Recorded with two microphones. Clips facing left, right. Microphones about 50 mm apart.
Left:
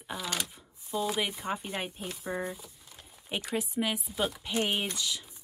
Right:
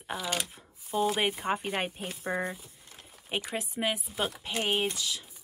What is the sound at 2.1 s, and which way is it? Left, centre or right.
Speech, right.